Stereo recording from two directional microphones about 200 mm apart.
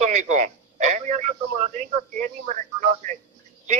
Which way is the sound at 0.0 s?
35° right (ahead or behind).